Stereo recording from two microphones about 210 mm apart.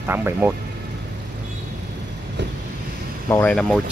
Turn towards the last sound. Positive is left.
turn(degrees=5)  # may be behind; listen again after turning